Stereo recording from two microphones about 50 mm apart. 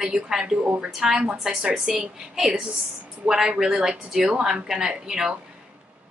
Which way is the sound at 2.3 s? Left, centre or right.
Centre.